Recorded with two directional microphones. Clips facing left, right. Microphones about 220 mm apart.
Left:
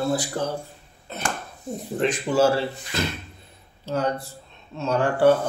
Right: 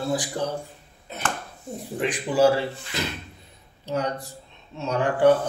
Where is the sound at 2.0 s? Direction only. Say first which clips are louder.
Even; 15° right (ahead or behind).